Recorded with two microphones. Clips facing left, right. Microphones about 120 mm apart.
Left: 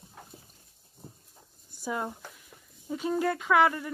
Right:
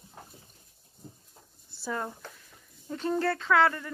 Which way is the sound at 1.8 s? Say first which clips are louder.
Left 1 dB; 10° left (ahead or behind).